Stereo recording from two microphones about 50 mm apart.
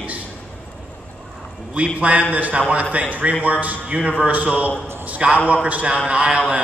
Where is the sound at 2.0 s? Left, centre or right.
Right.